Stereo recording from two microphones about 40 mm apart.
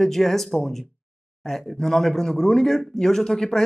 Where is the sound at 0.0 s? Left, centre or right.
Centre.